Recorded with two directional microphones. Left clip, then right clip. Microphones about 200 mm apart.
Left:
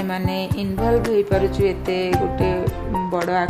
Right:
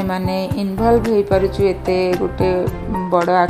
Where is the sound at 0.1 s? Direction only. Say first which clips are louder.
Right 4 dB; 20° right (ahead or behind).